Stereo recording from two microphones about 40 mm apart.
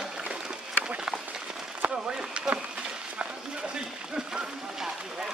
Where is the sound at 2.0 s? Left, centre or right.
Right.